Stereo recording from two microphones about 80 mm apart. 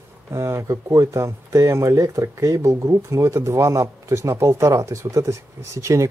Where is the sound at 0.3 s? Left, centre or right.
Right.